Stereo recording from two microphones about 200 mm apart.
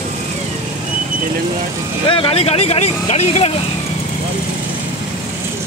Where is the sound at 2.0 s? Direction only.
25° left (ahead or behind).